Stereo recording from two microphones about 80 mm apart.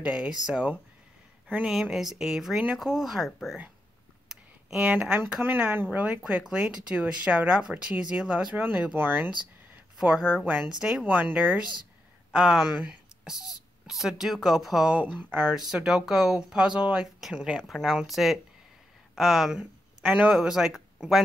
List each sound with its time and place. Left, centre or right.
0.0 s speech: centre
4.3 s a sound: centre
5.4 s speech: right
9.9 s speech: centre
10.4 s speech: right
10.7 s speech: centre
11.1 s speech: right
12.8 s a sound: centre
13.8 s speech: centre
14.9 s speech: centre
15.7 s speech: centre
19.6 s speech: centre
20.3 s speech: centre